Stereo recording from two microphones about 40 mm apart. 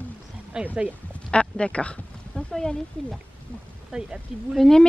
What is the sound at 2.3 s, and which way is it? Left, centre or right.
Speech, centre.